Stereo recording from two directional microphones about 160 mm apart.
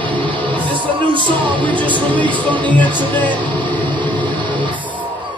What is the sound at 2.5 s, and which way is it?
Speech, 10° left (ahead or behind).